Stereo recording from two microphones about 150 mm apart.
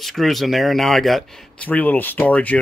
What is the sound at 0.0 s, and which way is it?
Speech, centre (ahead or behind).